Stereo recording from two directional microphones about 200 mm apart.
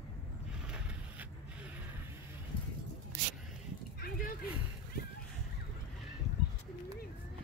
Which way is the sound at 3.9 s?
50° left (ahead or behind).